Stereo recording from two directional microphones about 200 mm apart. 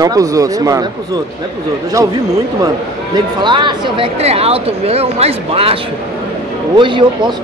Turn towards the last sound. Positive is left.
turn(degrees=-25)  # may be behind; listen again after turning